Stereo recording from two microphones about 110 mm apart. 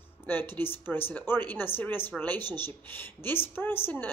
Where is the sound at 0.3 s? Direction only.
20° left (ahead or behind).